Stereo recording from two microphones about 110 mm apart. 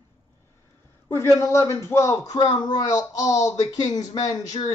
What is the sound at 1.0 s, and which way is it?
A man's voice, 25° left (ahead or behind).